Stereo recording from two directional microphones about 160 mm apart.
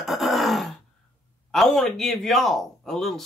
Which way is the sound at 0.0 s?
Centre (ahead or behind).